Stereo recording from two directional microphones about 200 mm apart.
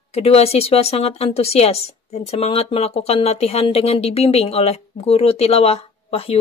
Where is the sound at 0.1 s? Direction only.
30° left (ahead or behind).